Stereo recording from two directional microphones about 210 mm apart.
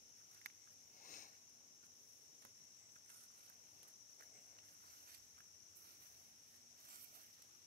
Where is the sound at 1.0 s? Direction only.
40° left (ahead or behind).